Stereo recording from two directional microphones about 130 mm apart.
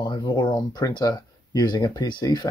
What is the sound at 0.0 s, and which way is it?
Speech, 35° left (ahead or behind).